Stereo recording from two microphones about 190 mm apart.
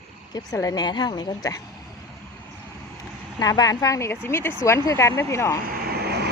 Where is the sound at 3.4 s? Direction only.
20° left (ahead or behind).